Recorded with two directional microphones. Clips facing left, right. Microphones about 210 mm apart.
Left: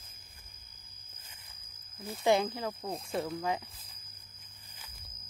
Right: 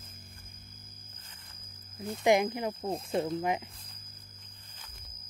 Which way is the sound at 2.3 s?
15° right (ahead or behind).